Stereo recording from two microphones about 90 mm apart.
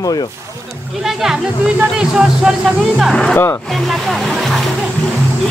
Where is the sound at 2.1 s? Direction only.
10° right (ahead or behind).